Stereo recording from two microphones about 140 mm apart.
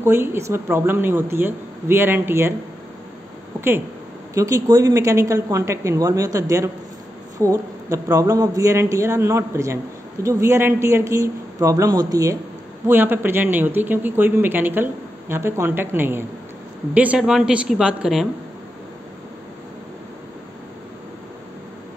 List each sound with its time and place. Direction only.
0.0 s a man's voice: 15° right (ahead or behind)
4.3 s a man's voice: 25° right (ahead or behind)
12.8 s a man's voice: 15° right (ahead or behind)